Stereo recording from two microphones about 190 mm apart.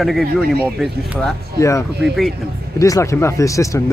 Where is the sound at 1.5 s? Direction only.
15° left (ahead or behind).